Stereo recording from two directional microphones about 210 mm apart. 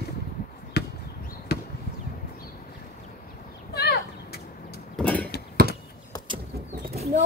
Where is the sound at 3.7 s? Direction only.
50° left (ahead or behind).